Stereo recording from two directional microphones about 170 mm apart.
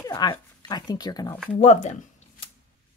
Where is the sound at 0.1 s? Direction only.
25° left (ahead or behind).